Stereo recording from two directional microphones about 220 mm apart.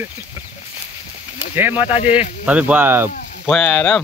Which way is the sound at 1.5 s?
10° right (ahead or behind).